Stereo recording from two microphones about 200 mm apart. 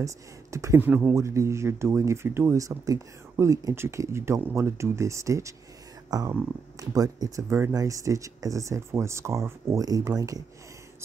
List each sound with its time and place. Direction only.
0.0 s speech: 15° right (ahead or behind)